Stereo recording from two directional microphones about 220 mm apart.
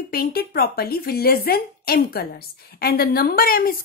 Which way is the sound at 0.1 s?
45° left (ahead or behind).